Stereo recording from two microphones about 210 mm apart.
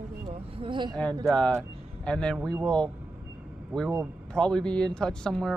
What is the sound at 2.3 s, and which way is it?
Speech, 15° right (ahead or behind).